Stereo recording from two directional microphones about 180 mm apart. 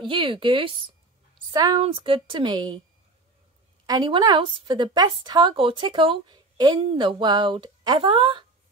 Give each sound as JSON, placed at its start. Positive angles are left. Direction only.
{"t": 0.0, "sound": "a woman's voice", "side_deg": -30}
{"t": 3.8, "sound": "a woman's voice", "side_deg": -25}